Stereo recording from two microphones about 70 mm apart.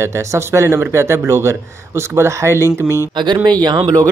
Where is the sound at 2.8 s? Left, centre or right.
Left.